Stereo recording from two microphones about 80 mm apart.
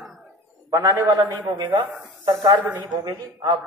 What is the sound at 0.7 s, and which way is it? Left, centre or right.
Speech, right.